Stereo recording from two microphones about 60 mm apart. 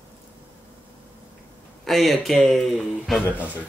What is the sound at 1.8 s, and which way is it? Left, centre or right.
Speech, centre.